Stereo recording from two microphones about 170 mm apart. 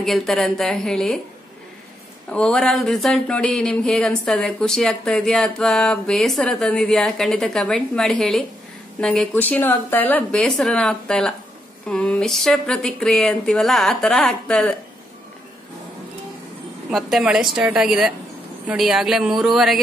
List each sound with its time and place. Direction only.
0.0 s speech: centre (ahead or behind)
2.2 s speech: 5° left (ahead or behind)
16.9 s speech: centre (ahead or behind)